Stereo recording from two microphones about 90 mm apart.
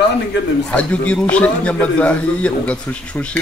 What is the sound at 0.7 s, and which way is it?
Speech, 15° left (ahead or behind).